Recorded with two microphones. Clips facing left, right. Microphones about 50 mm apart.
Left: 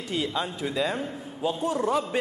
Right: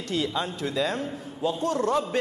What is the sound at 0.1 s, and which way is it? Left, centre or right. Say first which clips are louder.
A man's voice: right 1 dB; centre.